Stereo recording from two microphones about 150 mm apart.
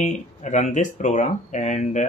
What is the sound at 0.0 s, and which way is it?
Speech, 55° left (ahead or behind).